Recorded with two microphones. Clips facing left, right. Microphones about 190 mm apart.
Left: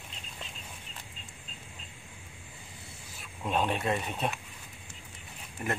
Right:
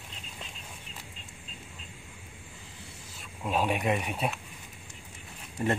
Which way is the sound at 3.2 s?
5° right (ahead or behind).